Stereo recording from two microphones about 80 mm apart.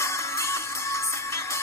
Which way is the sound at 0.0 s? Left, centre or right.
Left.